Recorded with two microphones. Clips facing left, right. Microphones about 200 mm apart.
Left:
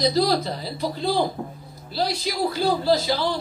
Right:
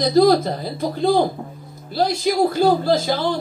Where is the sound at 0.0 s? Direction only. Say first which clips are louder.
Right 6 dB; 50° right (ahead or behind).